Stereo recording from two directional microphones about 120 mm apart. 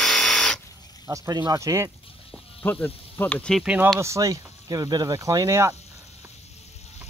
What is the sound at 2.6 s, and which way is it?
Speech, 15° left (ahead or behind).